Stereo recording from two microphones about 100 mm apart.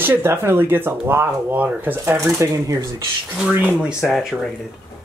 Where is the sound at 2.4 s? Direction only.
35° right (ahead or behind).